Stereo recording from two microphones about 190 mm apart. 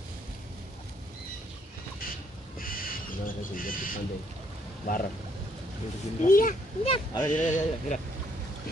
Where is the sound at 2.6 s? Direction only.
50° left (ahead or behind).